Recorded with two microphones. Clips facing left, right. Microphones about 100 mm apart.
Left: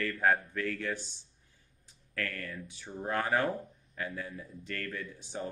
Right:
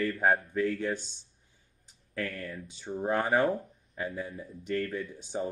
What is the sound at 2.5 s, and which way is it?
Speech, 25° right (ahead or behind).